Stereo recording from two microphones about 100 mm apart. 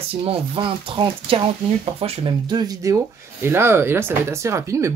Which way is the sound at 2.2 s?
45° right (ahead or behind).